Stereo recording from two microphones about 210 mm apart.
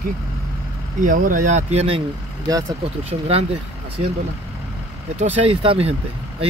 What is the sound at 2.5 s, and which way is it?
Speech, 15° right (ahead or behind).